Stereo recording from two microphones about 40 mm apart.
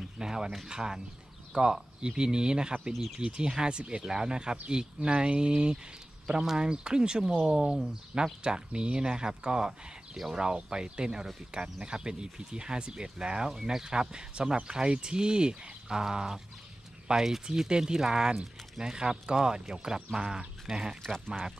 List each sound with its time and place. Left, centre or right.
0.2 s speech: centre
4.0 s speech: centre
10.1 s speech: centre
10.4 s speech: centre
20.7 s speech: centre